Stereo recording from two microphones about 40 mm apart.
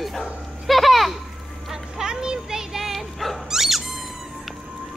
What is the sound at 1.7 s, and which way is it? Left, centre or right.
Bow-wow, centre.